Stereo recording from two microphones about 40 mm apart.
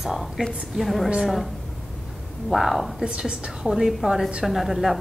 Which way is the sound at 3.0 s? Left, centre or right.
Right.